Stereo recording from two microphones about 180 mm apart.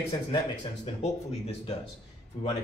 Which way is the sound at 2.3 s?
35° left (ahead or behind).